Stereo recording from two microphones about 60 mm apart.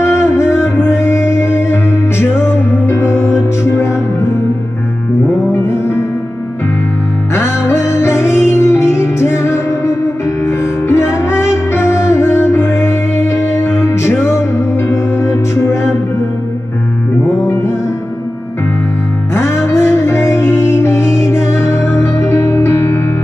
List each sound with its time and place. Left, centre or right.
0.0 s music: left
7.3 s music: left
19.3 s music: left